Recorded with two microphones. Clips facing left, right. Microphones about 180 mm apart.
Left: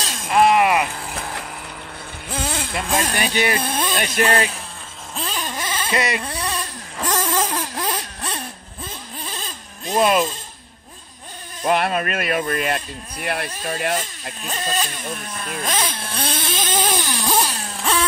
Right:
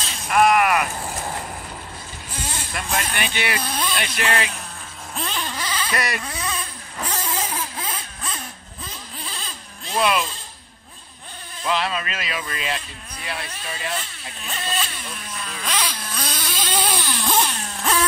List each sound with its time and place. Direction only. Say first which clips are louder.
0.3 s speech: left 2 dB; 25° left (ahead or behind)
2.2 s vehicle: left 7 dB; 60° left (ahead or behind); by 3.1 s 75° left (ahead or behind)
3.1 s a sound: left 5 dB; 40° left (ahead or behind)
3.6 s speech: left 3 dB; 50° left (ahead or behind)
5.1 s a sound: left 1 dB; centre (ahead or behind)
5.4 s baby cry: left 1 dB; 20° left (ahead or behind)
6.6 s vehicle: left 4 dB; 90° left; by 8.4 s 70° left (ahead or behind)
9.2 s baby cry: left 2 dB; 45° left (ahead or behind)
11.6 s speech: left 5 dB; 55° left (ahead or behind)
13.9 s speech: left 5 dB; 40° left (ahead or behind)
15.9 s vehicle: left 4 dB; 30° left (ahead or behind)
16.9 s a sound: left 2 dB; 20° left (ahead or behind)